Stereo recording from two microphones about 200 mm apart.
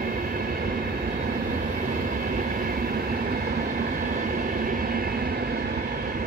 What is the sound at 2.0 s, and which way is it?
Train, 45° right (ahead or behind).